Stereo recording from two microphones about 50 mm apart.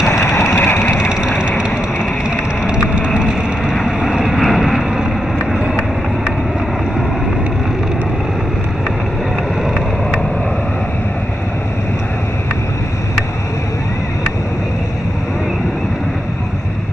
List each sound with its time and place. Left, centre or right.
0.3 s vehicle: centre
0.7 s vehicle: left
2.6 s a sound: centre
3.2 s vehicle: centre